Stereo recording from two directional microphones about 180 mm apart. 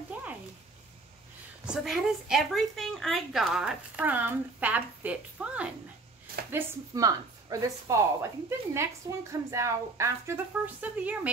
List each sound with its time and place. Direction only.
0.1 s a sound: 10° right (ahead or behind)
1.7 s a woman's voice: centre (ahead or behind)
6.5 s a woman's voice: 20° right (ahead or behind)